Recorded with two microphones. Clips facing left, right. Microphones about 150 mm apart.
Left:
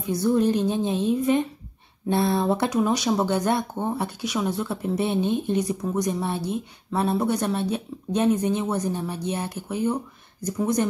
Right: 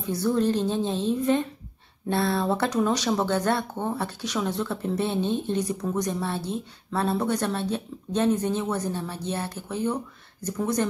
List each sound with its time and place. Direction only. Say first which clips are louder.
0.0 s speech: left 3 dB; 15° left (ahead or behind)